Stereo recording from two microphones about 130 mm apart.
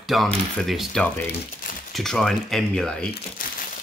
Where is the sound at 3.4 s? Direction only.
90° left.